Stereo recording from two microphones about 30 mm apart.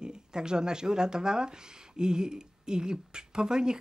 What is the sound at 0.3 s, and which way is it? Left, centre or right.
Speech, right.